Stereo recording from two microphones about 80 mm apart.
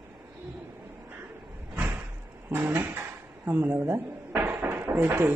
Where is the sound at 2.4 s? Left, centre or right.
Right.